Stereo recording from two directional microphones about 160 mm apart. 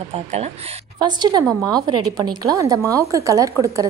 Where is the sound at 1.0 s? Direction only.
25° right (ahead or behind).